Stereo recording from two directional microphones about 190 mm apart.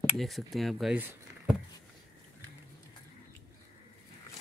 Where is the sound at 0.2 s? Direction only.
Centre (ahead or behind).